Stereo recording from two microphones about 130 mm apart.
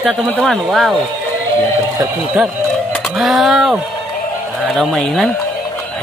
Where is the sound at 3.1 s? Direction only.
Centre (ahead or behind).